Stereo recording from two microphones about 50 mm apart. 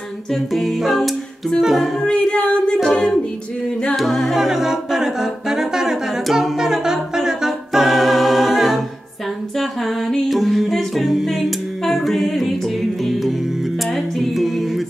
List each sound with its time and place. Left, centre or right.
0.3 s music: centre
2.0 s singing: centre
3.9 s music: centre
4.4 s a capella: centre
11.1 s music: centre
13.9 s music: centre